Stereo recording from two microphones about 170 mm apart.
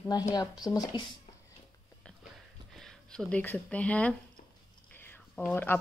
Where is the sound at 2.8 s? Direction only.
5° left (ahead or behind).